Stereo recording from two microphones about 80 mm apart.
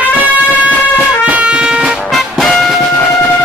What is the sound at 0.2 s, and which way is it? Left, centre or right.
Music, centre.